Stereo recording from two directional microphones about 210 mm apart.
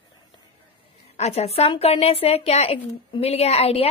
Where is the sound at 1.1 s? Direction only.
30° left (ahead or behind).